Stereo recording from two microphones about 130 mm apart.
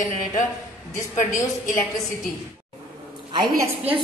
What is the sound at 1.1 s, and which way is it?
Speech, 85° left.